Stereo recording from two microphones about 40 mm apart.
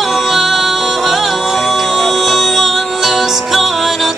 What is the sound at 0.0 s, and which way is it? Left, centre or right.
Music, centre.